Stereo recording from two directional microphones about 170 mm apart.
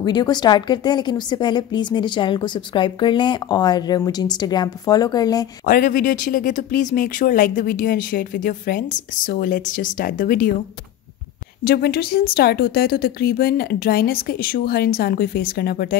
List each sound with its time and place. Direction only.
0.0 s a woman's voice: 25° left (ahead or behind)
5.7 s speech: 55° left (ahead or behind)
11.6 s speech: 65° left (ahead or behind)